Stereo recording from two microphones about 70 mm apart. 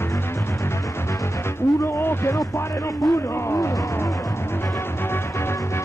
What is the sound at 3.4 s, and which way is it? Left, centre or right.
Speech, left.